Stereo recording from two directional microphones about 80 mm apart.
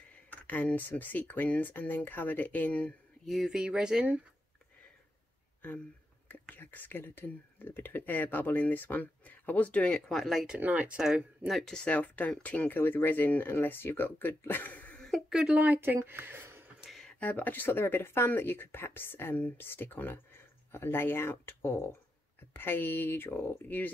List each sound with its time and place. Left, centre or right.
0.1 s speech: centre
3.3 s speech: centre
6.4 s speech: left; by 10.4 s centre
10.4 s speech: centre
11.0 s speech: centre
15.0 s a sound: centre
15.6 s speech: right
17.2 s speech: left